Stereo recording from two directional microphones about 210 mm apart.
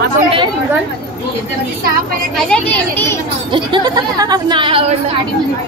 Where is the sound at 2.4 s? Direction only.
5° left (ahead or behind).